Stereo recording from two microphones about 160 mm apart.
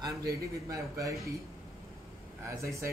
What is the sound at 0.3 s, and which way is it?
Speech, 20° right (ahead or behind).